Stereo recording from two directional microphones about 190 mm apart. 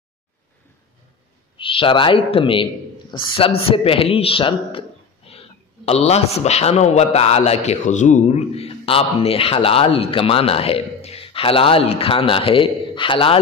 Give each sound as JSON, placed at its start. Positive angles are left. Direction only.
{"t": 1.6, "sound": "a man's voice", "side_deg": 25}